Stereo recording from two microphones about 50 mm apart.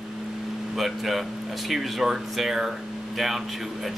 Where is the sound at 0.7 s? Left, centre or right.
Centre.